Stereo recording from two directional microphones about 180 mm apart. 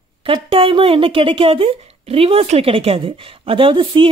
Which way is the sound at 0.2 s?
30° right (ahead or behind).